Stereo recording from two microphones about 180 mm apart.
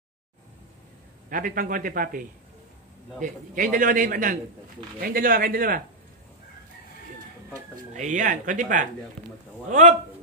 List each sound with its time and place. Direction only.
1.3 s a man's voice: 50° right (ahead or behind)
7.7 s a man's voice: 45° right (ahead or behind)